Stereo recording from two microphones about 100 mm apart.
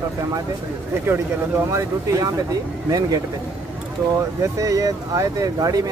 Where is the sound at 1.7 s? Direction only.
30° right (ahead or behind).